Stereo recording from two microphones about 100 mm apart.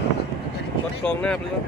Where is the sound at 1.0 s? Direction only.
10° left (ahead or behind).